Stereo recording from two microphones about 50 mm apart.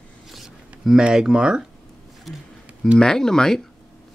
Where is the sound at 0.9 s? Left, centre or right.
Centre.